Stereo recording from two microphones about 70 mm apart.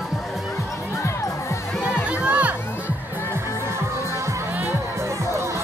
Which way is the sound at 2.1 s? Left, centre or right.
Centre.